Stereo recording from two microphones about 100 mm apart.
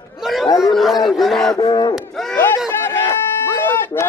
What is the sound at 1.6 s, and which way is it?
Speech, 35° left (ahead or behind).